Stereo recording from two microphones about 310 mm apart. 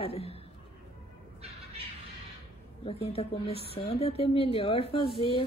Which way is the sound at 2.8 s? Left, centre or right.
Centre.